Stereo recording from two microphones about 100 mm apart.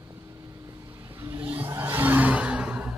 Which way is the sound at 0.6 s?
25° right (ahead or behind).